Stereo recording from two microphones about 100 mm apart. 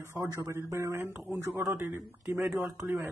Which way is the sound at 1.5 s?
5° right (ahead or behind).